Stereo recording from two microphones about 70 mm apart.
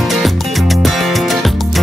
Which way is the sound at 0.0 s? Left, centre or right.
Centre.